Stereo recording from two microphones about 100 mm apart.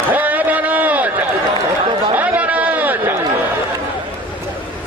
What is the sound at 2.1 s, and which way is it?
Chatter, 15° right (ahead or behind).